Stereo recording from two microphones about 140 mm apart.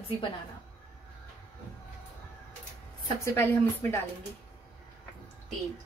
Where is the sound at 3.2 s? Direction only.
20° left (ahead or behind).